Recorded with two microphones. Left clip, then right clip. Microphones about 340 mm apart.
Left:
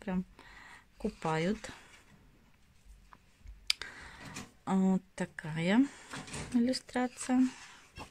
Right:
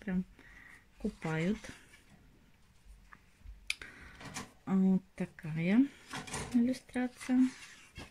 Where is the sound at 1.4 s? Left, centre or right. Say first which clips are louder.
Left 3 dB; centre.